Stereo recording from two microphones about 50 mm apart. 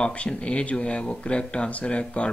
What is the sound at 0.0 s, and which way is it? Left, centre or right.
Speech, left.